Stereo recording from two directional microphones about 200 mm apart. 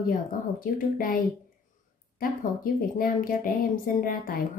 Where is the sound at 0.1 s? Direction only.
45° left (ahead or behind).